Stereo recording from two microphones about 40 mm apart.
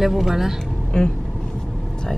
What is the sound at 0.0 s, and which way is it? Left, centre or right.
Speech, centre.